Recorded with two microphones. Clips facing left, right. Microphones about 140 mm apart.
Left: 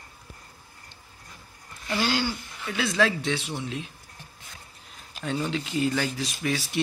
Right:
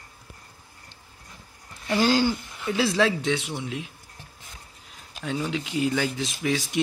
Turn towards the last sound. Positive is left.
turn(degrees=-20)  # may be behind; listen again after turning